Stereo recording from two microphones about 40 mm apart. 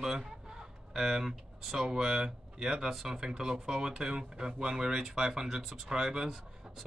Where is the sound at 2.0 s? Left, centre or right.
Centre.